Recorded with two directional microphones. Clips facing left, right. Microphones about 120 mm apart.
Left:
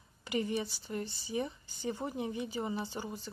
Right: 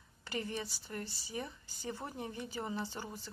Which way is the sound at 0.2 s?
15° left (ahead or behind).